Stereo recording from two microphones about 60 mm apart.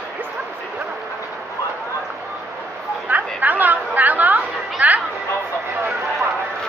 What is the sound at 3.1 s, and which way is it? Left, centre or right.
Chatter, right.